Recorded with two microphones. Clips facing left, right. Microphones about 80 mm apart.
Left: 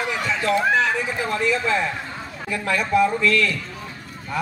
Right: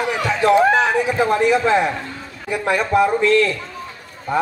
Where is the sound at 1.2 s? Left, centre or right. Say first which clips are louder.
Right 7 dB; right.